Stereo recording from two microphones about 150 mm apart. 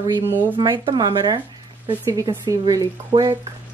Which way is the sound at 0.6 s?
30° right (ahead or behind).